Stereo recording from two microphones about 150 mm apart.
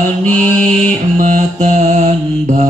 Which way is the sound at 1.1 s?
55° right (ahead or behind).